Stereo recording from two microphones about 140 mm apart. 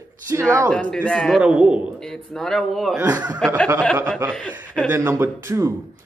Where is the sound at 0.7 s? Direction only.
10° left (ahead or behind).